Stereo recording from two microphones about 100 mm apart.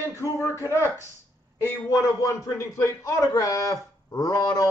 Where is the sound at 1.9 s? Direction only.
35° left (ahead or behind).